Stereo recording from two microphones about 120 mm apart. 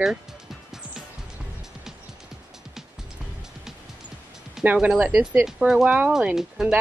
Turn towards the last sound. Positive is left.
turn(degrees=-5)  # may be behind; listen again after turning